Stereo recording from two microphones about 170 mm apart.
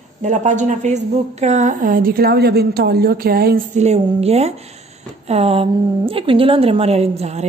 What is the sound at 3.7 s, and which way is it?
A woman's voice, 40° right (ahead or behind).